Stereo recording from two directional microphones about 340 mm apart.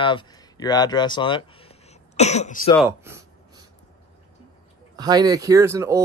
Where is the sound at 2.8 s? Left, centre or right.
Centre.